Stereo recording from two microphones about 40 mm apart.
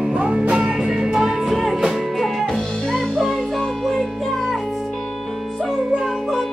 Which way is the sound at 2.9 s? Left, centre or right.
Centre.